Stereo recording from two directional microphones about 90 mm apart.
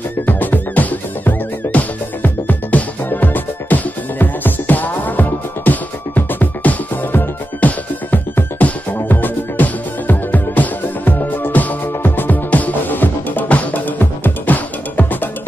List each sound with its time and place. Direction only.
0.3 s music: 20° left (ahead or behind)